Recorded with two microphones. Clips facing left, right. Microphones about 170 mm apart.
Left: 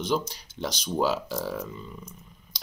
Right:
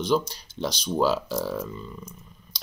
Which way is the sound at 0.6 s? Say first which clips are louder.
Right 2 dB; 15° left (ahead or behind).